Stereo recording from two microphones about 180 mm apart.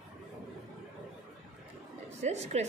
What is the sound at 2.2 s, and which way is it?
Speech, 35° right (ahead or behind).